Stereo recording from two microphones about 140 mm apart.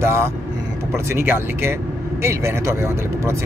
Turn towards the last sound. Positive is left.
turn(degrees=-20)  # may be behind; listen again after turning